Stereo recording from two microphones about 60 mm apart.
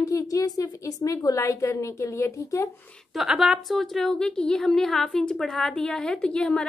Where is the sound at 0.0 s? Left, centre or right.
Left.